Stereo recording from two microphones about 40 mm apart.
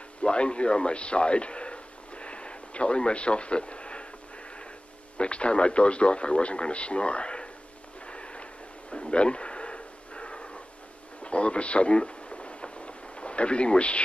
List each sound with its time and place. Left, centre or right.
0.2 s a man's voice: left
5.1 s speech: left
8.1 s a sound: left